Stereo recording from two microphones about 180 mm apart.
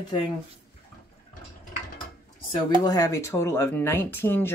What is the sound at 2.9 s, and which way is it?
Speech, 20° left (ahead or behind).